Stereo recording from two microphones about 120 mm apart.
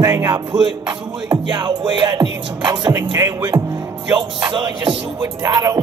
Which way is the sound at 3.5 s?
20° right (ahead or behind).